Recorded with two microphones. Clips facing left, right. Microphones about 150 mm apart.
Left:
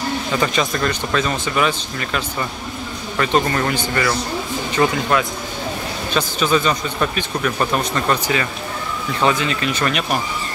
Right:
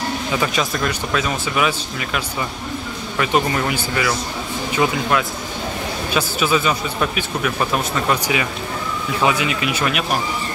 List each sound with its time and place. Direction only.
0.3 s speech: 5° right (ahead or behind)
6.1 s speech: 5° right (ahead or behind)